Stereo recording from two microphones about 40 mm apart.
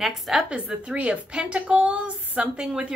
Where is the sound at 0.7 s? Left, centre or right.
Right.